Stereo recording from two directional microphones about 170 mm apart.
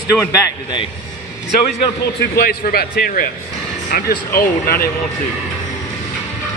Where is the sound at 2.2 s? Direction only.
65° left (ahead or behind).